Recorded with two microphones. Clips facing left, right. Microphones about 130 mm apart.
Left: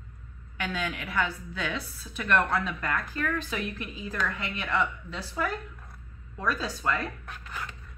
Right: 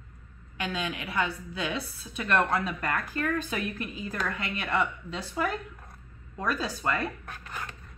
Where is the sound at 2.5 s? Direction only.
35° right (ahead or behind).